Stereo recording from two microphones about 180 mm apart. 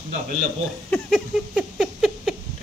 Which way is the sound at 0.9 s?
Centre (ahead or behind).